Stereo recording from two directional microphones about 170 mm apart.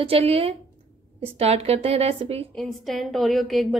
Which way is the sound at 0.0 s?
35° right (ahead or behind).